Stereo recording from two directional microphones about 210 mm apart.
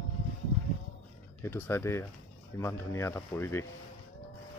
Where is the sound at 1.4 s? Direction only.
10° left (ahead or behind).